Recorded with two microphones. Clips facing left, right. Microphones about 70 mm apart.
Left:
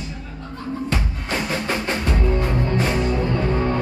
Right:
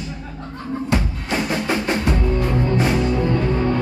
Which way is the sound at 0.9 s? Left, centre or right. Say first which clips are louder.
Right 6 dB; right.